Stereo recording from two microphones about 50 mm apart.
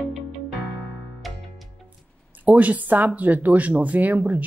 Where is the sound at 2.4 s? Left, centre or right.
Right.